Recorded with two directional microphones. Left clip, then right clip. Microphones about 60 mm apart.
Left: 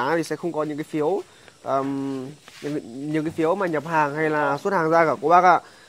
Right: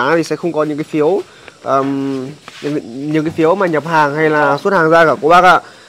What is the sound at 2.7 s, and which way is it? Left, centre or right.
Speech, left.